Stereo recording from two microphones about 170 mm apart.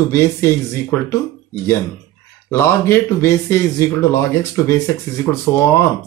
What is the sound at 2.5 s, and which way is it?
Speech, 15° left (ahead or behind).